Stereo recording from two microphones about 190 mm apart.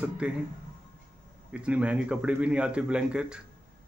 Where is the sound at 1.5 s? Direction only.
5° right (ahead or behind).